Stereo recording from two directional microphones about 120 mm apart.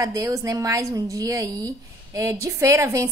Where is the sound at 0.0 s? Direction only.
25° right (ahead or behind).